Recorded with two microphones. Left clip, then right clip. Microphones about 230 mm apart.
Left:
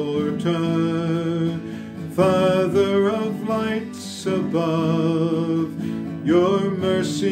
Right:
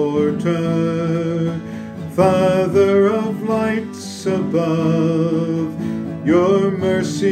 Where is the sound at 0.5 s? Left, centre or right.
Centre.